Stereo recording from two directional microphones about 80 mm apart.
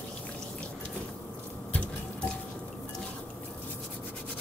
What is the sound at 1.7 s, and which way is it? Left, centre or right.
Sink, centre.